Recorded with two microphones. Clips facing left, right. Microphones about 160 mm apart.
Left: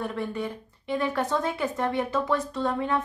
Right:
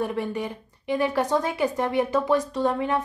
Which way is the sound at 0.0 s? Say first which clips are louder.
Right 3 dB; 15° right (ahead or behind).